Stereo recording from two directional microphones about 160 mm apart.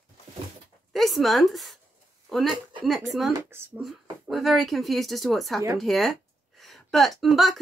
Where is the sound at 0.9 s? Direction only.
Centre (ahead or behind).